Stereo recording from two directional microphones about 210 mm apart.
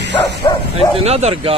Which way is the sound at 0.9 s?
30° right (ahead or behind).